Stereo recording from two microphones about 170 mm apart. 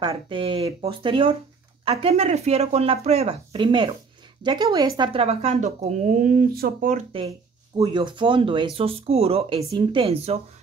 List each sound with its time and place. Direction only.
0.0 s speech: 25° right (ahead or behind); by 6.9 s 60° right (ahead or behind)
7.1 s speech: 35° right (ahead or behind)
9.6 s speech: 25° right (ahead or behind)